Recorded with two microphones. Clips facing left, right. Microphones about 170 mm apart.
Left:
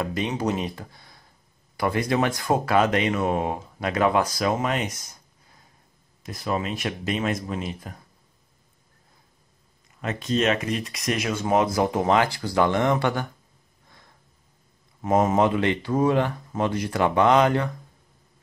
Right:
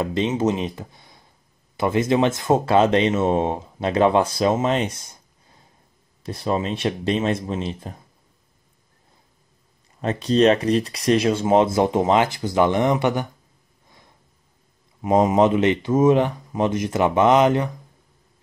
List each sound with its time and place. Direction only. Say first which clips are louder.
0.0 s speech: right 5 dB; 25° right (ahead or behind)
10.0 s speech: right 7 dB; 35° right (ahead or behind); by 13.3 s 20° right (ahead or behind)
13.8 s snort: right 2 dB; 15° right (ahead or behind)
15.0 s speech: right 3 dB; 20° right (ahead or behind)